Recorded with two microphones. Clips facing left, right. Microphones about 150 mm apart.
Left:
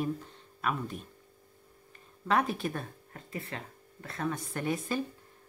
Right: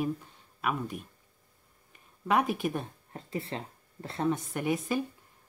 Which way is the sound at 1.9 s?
15° right (ahead or behind).